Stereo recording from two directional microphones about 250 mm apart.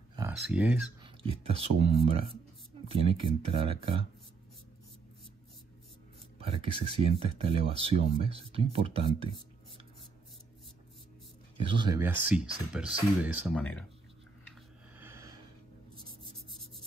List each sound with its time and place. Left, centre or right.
0.4 s speech: centre
1.0 s speech: right
6.3 s speech: right
11.5 s speech: centre
15.0 s a sound: centre
16.0 s a sound: right